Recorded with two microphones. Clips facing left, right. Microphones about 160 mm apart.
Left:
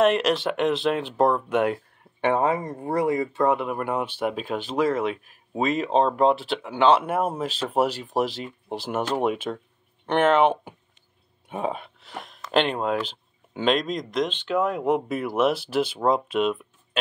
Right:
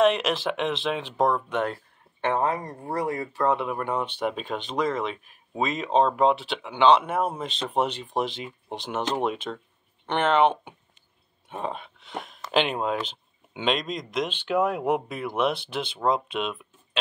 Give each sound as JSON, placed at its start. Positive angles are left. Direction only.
{"t": 0.0, "sound": "speech", "side_deg": 0}
{"t": 2.2, "sound": "speech", "side_deg": 20}
{"t": 3.5, "sound": "speech", "side_deg": 5}